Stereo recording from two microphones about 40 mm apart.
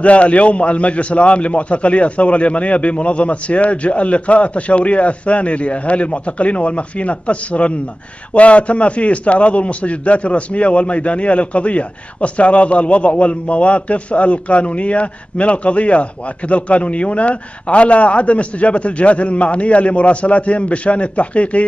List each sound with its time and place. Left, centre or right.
0.0 s a man's voice: left